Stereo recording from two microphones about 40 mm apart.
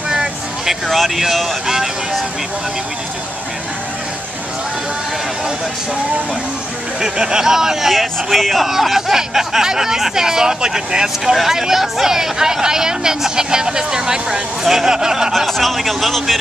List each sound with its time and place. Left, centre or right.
0.1 s vehicle: centre
0.8 s speech: centre
7.0 s speech: centre
7.9 s speech: centre
15.3 s speech: centre